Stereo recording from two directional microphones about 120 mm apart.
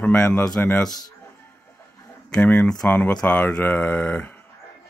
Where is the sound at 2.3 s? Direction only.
10° left (ahead or behind).